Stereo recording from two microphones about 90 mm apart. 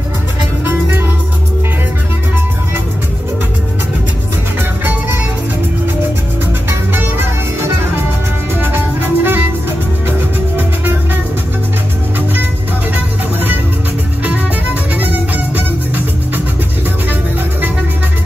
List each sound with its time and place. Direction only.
0.7 s music: 20° right (ahead or behind)
6.7 s music: 25° right (ahead or behind)
12.9 s music: 20° right (ahead or behind)